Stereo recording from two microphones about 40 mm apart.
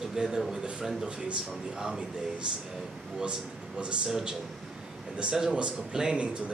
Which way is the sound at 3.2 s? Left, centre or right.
Right.